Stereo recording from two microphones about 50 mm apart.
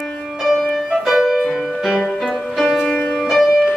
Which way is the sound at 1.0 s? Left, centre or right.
Centre.